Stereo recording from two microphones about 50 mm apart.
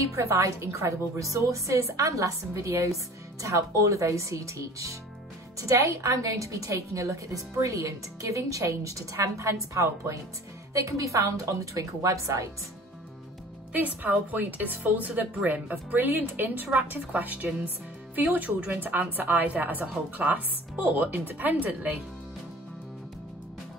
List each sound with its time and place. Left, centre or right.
0.1 s a woman's voice: right
13.8 s speech: right